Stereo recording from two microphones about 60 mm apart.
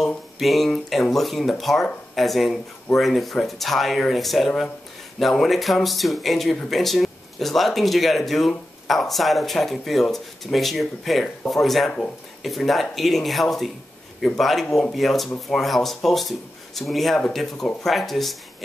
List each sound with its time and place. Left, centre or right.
0.4 s speech: centre